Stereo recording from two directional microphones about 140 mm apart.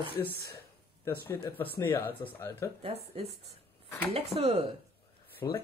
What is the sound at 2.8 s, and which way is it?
Speech, 45° right (ahead or behind).